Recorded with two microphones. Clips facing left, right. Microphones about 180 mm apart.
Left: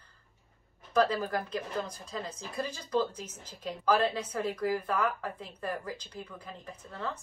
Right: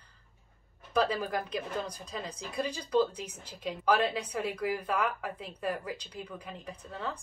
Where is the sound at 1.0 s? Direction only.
10° right (ahead or behind).